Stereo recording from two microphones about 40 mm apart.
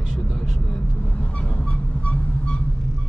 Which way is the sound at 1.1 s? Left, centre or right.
Left.